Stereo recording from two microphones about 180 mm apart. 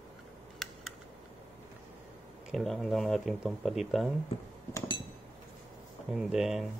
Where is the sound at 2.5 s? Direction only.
Centre (ahead or behind).